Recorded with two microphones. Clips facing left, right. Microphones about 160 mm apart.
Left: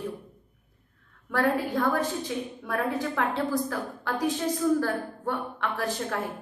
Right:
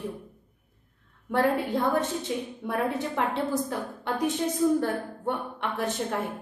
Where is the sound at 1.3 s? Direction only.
25° right (ahead or behind).